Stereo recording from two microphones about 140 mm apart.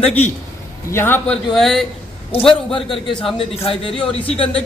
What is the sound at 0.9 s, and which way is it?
Speech, 15° left (ahead or behind).